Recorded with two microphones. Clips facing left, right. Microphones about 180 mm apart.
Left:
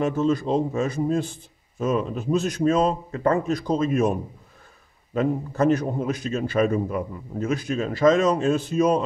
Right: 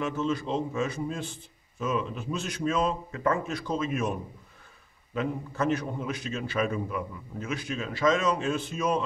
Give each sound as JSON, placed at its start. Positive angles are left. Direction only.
{"t": 0.0, "sound": "a man's voice", "side_deg": 40}
{"t": 5.1, "sound": "a man's voice", "side_deg": 40}